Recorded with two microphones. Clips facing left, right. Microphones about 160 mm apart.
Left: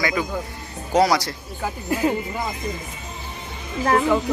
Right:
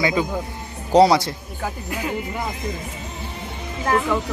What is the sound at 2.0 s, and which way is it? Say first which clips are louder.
Speech: left 6 dB; 25° left (ahead or behind).